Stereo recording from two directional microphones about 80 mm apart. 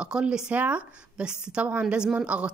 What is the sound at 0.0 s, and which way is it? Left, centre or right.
A woman's voice, centre.